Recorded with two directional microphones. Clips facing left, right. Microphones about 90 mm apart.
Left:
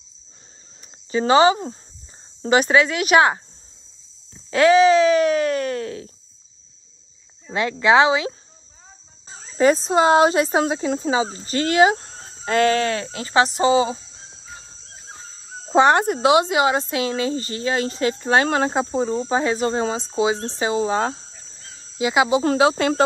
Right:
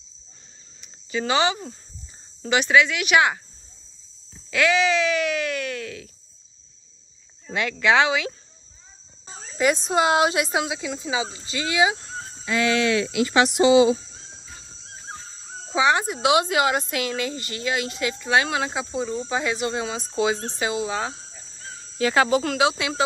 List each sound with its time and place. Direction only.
0.7 s speech: 40° left (ahead or behind)
4.5 s speech: 35° left (ahead or behind)
7.5 s speech: 30° left (ahead or behind)
9.6 s speech: 35° left (ahead or behind)
15.7 s cricket: 50° left (ahead or behind)
16.2 s speech: 30° left (ahead or behind)
21.9 s speech: 15° left (ahead or behind)
22.4 s speech: 35° left (ahead or behind)